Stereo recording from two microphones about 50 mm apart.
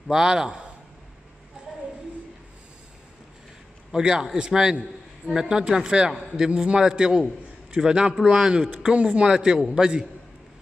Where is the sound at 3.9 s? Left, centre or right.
Centre.